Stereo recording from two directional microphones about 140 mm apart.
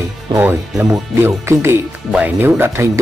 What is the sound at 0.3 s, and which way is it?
Speech, 15° right (ahead or behind).